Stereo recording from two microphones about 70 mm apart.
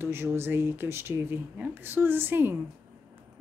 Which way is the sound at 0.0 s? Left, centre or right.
Right.